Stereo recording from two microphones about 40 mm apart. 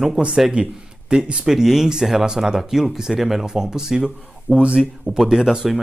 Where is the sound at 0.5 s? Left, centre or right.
Right.